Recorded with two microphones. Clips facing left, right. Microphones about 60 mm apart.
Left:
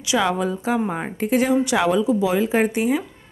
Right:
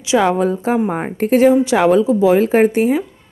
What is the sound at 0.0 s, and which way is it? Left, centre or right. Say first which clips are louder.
A woman's voice: right 6 dB; right.